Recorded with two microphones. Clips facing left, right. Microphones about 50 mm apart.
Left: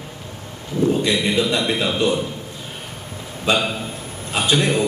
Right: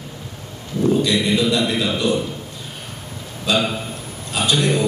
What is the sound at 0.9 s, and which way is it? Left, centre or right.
A man's voice, left.